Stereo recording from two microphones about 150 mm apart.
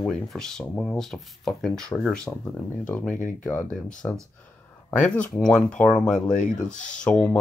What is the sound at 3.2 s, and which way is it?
Speech, 60° left (ahead or behind).